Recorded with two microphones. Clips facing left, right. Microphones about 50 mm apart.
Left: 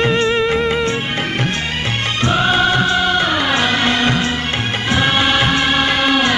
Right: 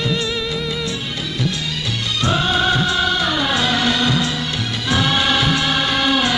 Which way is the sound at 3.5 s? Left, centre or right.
Left.